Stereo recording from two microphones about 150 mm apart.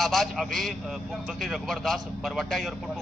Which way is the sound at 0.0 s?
Centre (ahead or behind).